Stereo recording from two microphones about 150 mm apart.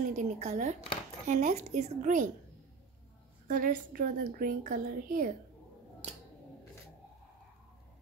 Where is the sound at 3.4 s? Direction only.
65° right (ahead or behind).